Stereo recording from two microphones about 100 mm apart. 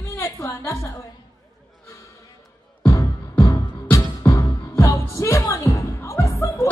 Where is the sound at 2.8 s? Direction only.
30° left (ahead or behind).